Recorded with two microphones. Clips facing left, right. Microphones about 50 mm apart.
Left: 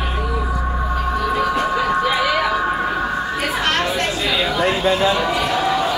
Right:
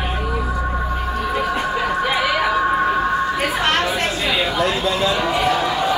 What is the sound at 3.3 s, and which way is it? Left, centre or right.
Children playing, centre.